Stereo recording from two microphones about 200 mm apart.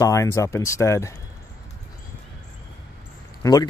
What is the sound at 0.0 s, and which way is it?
Speech, 15° left (ahead or behind).